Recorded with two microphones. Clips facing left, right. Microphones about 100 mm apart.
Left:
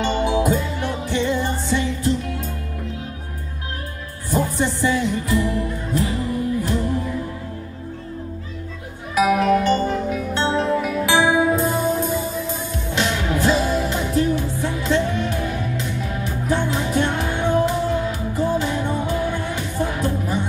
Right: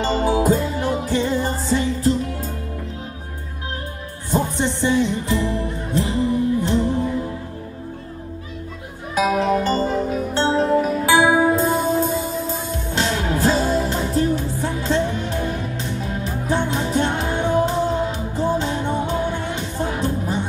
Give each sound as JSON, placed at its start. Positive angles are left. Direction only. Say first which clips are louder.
{"t": 0.0, "sound": "music", "louder": "right 1 dB", "side_deg": -35}
{"t": 4.3, "sound": "music", "louder": "even", "side_deg": -25}
{"t": 9.1, "sound": "music", "louder": "left 2 dB", "side_deg": -25}